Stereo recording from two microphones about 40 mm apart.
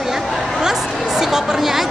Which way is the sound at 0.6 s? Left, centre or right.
Centre.